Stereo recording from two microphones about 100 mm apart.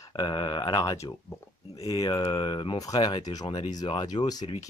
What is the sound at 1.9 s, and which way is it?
Speech, 40° left (ahead or behind).